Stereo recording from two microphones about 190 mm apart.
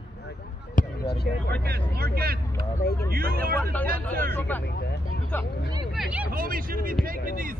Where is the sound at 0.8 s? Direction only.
45° left (ahead or behind).